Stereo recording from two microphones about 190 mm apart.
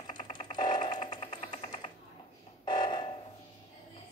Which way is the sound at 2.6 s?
25° left (ahead or behind).